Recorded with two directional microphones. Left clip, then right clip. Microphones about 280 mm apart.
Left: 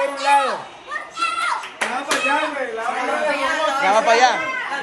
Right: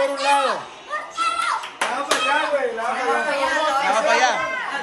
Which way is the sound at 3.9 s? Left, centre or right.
Centre.